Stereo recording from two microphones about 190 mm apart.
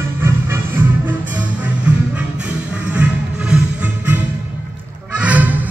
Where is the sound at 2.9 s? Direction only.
5° right (ahead or behind).